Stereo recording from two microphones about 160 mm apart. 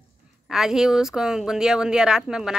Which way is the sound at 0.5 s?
5° right (ahead or behind).